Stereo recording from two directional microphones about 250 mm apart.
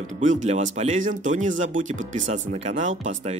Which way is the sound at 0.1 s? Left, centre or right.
Right.